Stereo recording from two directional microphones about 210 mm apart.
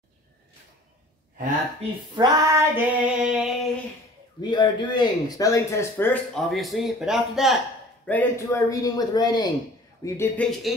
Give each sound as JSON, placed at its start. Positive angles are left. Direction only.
{"t": 2.1, "sound": "female singing", "side_deg": -15}
{"t": 4.4, "sound": "speech", "side_deg": 20}
{"t": 6.3, "sound": "speech", "side_deg": 0}